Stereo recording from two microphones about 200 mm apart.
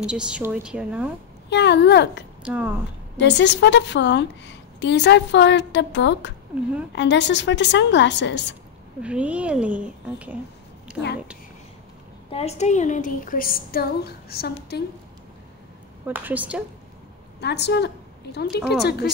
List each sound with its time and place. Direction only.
0.0 s a woman's voice: 5° right (ahead or behind)
1.5 s a woman's voice: 60° left (ahead or behind)
2.4 s speech: 5° right (ahead or behind)
3.2 s a woman's voice: 60° left (ahead or behind)
9.0 s a woman's voice: 5° right (ahead or behind)
12.3 s a woman's voice: 30° left (ahead or behind); by 14.8 s 50° left (ahead or behind)
16.1 s speech: 10° right (ahead or behind)
17.4 s a woman's voice: 55° left (ahead or behind)